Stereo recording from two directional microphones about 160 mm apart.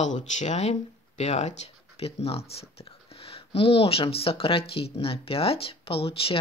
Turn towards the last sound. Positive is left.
turn(degrees=35)  # may be behind; listen again after turning